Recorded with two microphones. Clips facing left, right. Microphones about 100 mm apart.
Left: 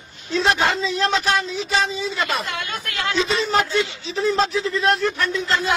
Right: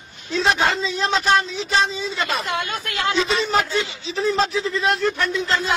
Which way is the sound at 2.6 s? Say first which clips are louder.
Right 2 dB; 30° right (ahead or behind).